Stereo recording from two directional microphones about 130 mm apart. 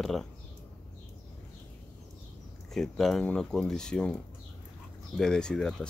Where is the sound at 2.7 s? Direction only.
5° left (ahead or behind).